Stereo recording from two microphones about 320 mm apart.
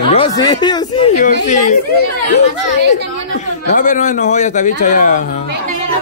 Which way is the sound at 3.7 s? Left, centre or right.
Left.